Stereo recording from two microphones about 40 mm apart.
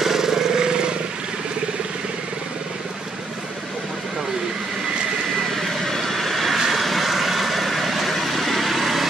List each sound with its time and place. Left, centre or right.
0.0 s vehicle: centre
5.9 s vehicle: centre